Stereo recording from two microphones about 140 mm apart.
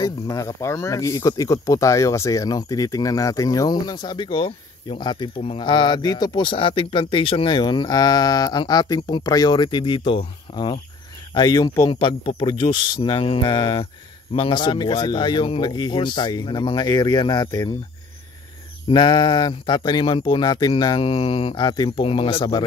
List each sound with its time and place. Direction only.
0.0 s speech: 25° left (ahead or behind)
11.9 s speech: 35° left (ahead or behind)
18.9 s speech: 30° left (ahead or behind)